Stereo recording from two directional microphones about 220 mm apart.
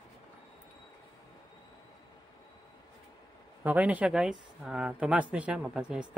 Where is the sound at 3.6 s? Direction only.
5° right (ahead or behind).